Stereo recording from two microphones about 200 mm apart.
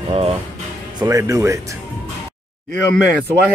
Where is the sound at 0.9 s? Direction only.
15° right (ahead or behind).